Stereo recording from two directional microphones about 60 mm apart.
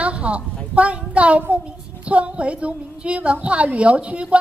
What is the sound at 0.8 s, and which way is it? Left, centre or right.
A woman's voice, right.